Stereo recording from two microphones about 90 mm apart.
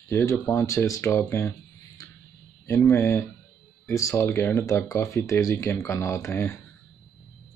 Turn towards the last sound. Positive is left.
turn(degrees=30)  # may be behind; listen again after turning